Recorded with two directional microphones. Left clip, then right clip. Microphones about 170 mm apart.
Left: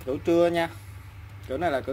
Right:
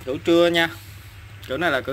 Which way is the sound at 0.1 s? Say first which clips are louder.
Right 5 dB; 15° left (ahead or behind).